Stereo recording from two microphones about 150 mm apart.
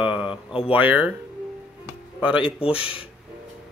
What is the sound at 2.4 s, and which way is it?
Speech, 40° left (ahead or behind).